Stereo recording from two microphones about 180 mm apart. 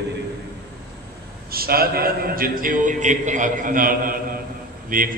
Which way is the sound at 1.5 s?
55° right (ahead or behind).